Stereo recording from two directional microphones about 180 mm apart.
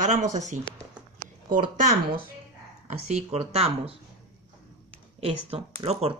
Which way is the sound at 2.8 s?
35° right (ahead or behind).